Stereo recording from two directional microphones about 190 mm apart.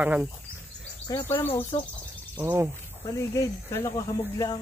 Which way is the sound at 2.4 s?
10° right (ahead or behind).